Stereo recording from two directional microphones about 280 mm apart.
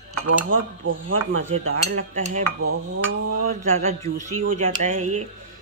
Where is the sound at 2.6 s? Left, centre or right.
Right.